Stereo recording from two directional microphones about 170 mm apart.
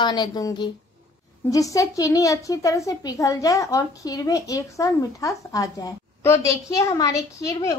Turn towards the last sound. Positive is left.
turn(degrees=20)  # may be behind; listen again after turning